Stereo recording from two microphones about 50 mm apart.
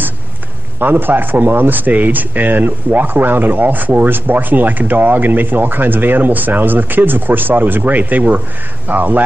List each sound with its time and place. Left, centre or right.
0.7 s speech: right